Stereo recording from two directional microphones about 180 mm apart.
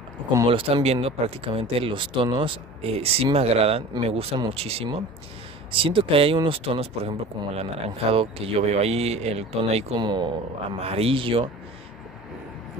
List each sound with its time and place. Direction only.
0.5 s speech: 30° right (ahead or behind)